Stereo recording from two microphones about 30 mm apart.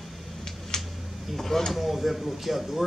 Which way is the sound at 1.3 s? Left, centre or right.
Centre.